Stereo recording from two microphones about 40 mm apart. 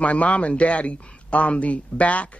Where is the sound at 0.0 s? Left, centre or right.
Left.